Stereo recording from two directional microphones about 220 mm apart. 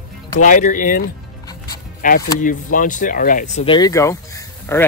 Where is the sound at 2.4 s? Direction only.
35° left (ahead or behind).